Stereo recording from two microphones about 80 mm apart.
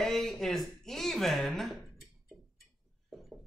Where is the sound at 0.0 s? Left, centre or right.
Centre.